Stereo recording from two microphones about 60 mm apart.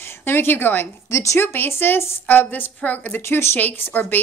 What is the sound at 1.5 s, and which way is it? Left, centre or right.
A woman's voice, left.